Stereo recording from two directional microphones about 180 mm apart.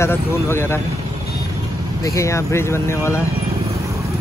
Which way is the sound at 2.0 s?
15° left (ahead or behind).